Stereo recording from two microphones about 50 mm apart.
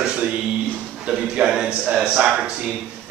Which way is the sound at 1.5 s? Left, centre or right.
Centre.